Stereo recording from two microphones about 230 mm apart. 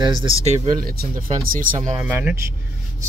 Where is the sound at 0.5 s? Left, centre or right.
Right.